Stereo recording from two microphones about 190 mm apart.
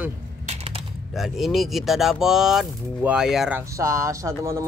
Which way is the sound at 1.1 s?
Centre (ahead or behind).